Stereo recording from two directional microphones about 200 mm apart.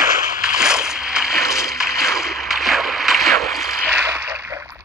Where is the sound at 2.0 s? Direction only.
Centre (ahead or behind).